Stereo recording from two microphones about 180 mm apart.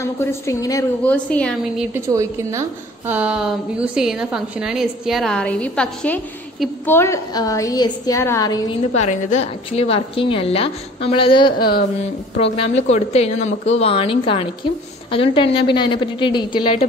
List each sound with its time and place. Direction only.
0.0 s a woman's voice: 15° left (ahead or behind)
1.0 s a woman's voice: 5° left (ahead or behind)
3.1 s a woman's voice: 5° right (ahead or behind); by 8.5 s 15° left (ahead or behind)
8.9 s a woman's voice: 40° left (ahead or behind)
11.5 s speech: 55° left (ahead or behind)
12.5 s a woman's voice: 35° left (ahead or behind)